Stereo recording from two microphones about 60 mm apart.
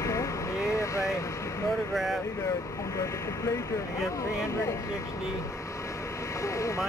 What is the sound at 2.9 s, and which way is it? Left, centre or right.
Speech, left.